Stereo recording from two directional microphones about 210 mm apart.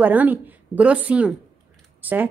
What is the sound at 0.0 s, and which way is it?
A woman's voice, 10° right (ahead or behind).